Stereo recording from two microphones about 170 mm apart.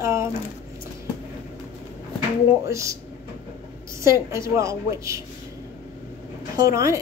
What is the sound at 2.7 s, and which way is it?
Speech, 20° right (ahead or behind).